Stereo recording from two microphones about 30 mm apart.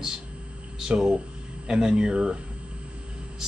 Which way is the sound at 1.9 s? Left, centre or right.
Right.